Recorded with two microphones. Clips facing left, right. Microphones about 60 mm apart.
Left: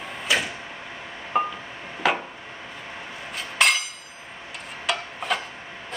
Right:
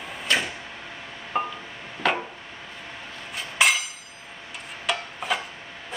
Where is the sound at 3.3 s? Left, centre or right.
Centre.